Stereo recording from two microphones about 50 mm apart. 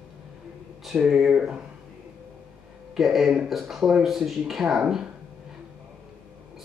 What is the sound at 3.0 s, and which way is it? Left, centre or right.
Speech, centre.